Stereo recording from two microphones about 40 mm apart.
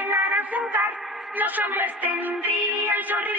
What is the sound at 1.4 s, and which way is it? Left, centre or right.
Music, right.